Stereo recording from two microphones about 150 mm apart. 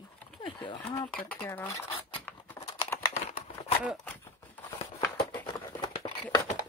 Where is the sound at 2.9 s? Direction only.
15° left (ahead or behind).